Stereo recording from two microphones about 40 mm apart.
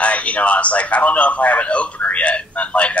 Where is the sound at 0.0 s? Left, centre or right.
Left.